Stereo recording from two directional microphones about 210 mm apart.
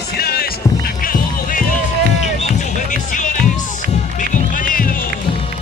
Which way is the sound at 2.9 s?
35° left (ahead or behind).